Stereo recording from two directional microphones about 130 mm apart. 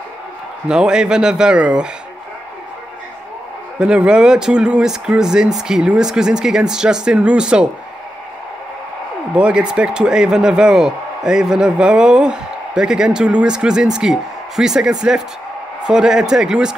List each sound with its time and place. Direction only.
0.7 s a man's voice: 5° right (ahead or behind)
3.8 s a man's voice: 5° right (ahead or behind)
9.3 s a man's voice: 5° right (ahead or behind)